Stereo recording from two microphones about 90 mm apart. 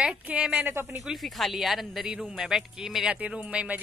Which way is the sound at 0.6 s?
25° right (ahead or behind).